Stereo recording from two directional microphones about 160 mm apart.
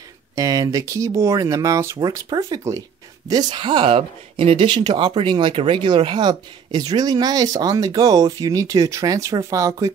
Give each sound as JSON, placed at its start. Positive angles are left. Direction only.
{"t": 0.4, "sound": "speech", "side_deg": -20}